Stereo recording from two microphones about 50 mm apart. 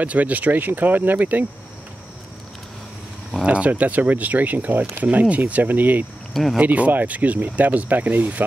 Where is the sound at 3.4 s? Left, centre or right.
Right.